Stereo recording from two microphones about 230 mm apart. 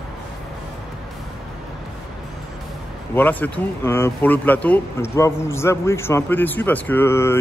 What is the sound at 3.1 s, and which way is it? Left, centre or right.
Speech, centre.